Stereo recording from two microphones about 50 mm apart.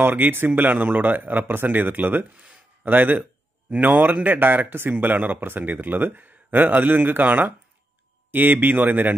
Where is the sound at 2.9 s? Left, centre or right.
Right.